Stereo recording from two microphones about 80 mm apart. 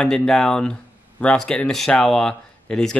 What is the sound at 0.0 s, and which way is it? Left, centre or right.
Speech, centre.